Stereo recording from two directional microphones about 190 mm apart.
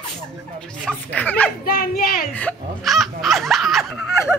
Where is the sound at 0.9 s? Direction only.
10° left (ahead or behind).